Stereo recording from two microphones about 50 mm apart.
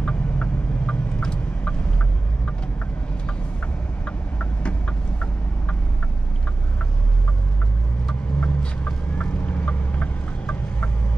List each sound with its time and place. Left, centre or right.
0.0 s vehicle: left
4.0 s vehicle: left
8.4 s vehicle: left